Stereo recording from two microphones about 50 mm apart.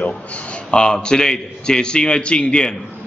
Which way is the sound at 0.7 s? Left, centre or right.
Centre.